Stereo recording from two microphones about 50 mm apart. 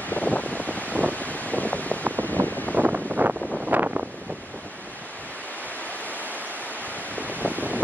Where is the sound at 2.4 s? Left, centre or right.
Right.